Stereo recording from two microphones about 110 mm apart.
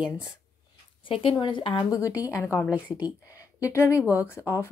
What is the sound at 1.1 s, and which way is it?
Speech, 55° left (ahead or behind).